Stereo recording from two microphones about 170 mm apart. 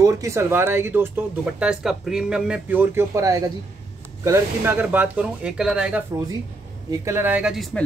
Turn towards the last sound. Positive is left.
turn(degrees=0)  # may be behind; listen again after turning